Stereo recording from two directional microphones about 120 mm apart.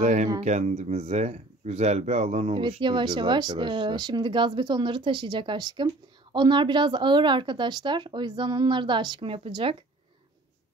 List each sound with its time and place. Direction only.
0.0 s speech: 80° right; by 2.5 s 65° right (ahead or behind)
2.8 s speech: 40° right (ahead or behind)